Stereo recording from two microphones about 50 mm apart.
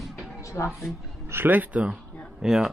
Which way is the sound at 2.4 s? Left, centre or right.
Centre.